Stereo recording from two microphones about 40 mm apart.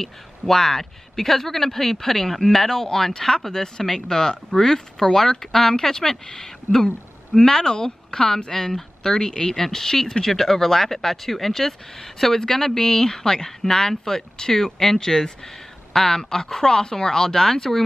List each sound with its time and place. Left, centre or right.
0.0 s speech: centre